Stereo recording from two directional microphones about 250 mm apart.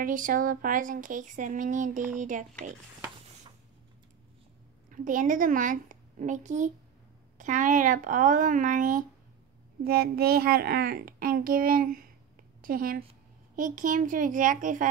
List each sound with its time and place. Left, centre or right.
0.0 s speech: right
4.9 s speech: right